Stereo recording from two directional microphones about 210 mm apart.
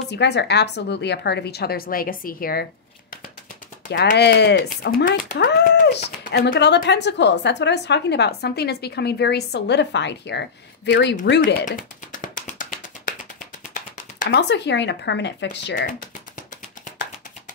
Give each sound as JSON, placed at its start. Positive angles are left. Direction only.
{"t": 0.1, "sound": "a woman's voice", "side_deg": 55}
{"t": 3.9, "sound": "a woman's voice", "side_deg": 55}
{"t": 11.6, "sound": "music", "side_deg": 40}
{"t": 13.7, "sound": "a sound", "side_deg": 40}
{"t": 14.4, "sound": "speech", "side_deg": 55}